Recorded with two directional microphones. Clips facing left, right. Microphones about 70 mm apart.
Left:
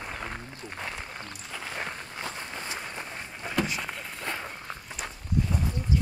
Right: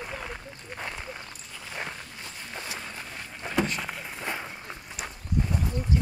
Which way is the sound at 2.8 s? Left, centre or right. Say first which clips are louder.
Left 2 dB; centre.